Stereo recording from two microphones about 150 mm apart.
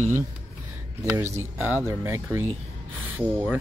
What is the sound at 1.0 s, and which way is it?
Speech, 20° right (ahead or behind).